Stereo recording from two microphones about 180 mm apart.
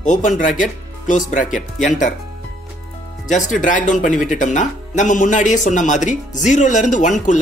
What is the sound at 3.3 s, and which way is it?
Speech, 45° left (ahead or behind).